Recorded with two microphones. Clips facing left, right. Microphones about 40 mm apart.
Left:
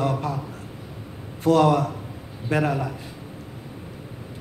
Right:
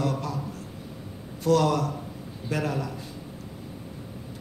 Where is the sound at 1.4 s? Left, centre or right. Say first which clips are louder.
Left 4 dB; left.